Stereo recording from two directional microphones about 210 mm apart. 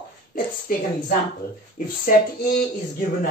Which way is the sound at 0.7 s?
45° left (ahead or behind).